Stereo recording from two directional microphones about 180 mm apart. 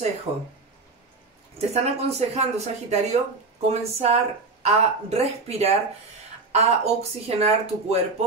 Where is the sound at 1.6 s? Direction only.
35° right (ahead or behind).